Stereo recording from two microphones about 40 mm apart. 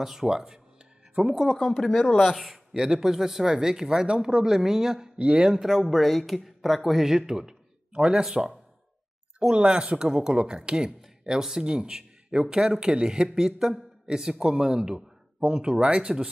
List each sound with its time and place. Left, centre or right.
0.0 s speech: centre
2.7 s speech: centre
5.1 s speech: right
5.5 s speech: centre
9.6 s speech: right